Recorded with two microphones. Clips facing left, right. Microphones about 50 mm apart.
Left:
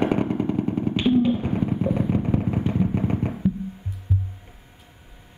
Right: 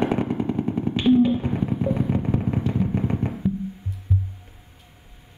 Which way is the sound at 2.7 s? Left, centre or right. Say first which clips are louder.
Left 1 dB; centre.